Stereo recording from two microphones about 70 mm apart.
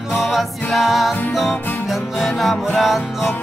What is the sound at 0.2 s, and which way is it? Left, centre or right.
Music, centre.